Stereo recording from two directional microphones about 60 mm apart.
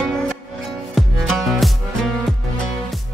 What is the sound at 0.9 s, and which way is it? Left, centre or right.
Music, centre.